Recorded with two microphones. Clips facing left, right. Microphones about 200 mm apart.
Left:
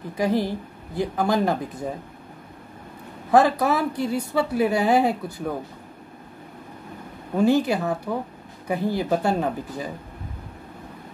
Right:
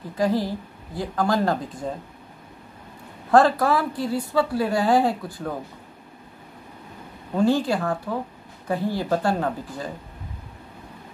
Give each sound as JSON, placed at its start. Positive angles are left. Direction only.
{"t": 0.2, "sound": "speech", "side_deg": 20}
{"t": 3.3, "sound": "speech", "side_deg": 20}
{"t": 7.3, "sound": "speech", "side_deg": 20}